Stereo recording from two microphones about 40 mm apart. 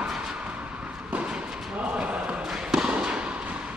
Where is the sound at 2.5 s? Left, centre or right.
Centre.